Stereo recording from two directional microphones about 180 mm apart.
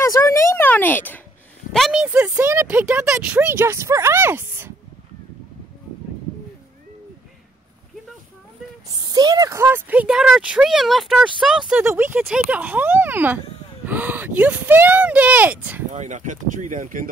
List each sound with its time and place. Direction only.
0.0 s a sound: 15° left (ahead or behind)
1.7 s speech: centre (ahead or behind)
8.9 s speech: 20° right (ahead or behind)
15.9 s speech: 40° right (ahead or behind)